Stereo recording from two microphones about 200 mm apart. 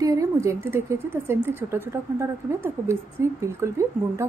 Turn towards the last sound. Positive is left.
turn(degrees=-15)  # may be behind; listen again after turning